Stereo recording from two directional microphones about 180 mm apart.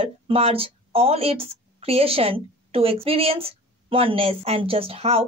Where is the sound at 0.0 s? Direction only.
35° right (ahead or behind).